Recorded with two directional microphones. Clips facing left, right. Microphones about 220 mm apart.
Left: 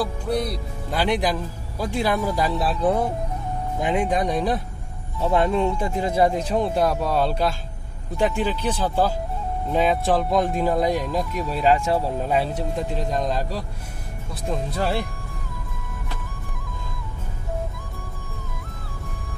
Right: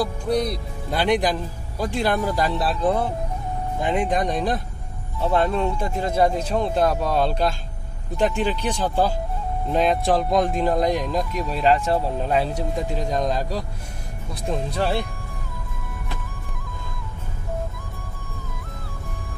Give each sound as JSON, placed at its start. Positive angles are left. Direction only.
{"t": 0.0, "sound": "speech", "side_deg": 5}
{"t": 4.0, "sound": "speech", "side_deg": 5}
{"t": 5.8, "sound": "speech", "side_deg": 15}